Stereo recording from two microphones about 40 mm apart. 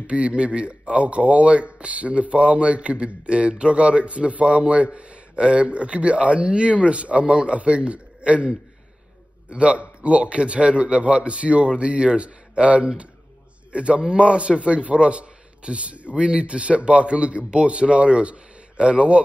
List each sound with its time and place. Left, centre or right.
0.0 s a man's voice: right